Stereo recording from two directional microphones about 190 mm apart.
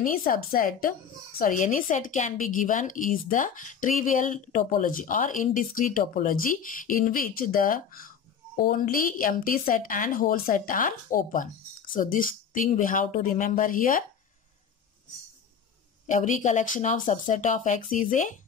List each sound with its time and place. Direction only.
0.0 s a woman's voice: 45° left (ahead or behind)
16.1 s speech: 40° left (ahead or behind)